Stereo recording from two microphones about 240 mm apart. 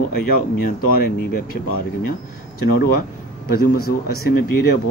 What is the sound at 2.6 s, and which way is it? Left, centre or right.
Speech, left.